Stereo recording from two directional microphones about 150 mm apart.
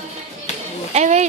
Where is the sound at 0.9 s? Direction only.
50° right (ahead or behind).